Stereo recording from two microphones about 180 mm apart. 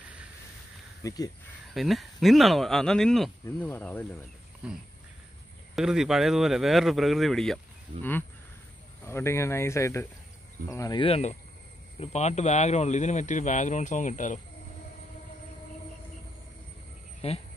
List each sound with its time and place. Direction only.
1.0 s speech: 20° left (ahead or behind)
1.7 s speech: centre (ahead or behind)
3.4 s speech: 15° left (ahead or behind)
5.8 s speech: 5° right (ahead or behind); by 14.4 s 45° left (ahead or behind)
17.2 s speech: 35° left (ahead or behind)